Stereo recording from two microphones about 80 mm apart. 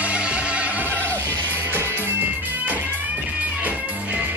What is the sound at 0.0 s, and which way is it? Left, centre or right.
Music, centre.